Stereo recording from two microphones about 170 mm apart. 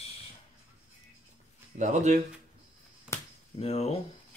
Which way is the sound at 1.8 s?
45° right (ahead or behind).